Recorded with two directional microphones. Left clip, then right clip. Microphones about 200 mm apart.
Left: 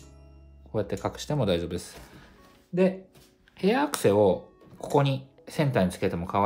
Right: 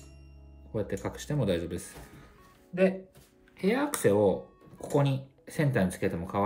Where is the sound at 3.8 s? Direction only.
Centre (ahead or behind).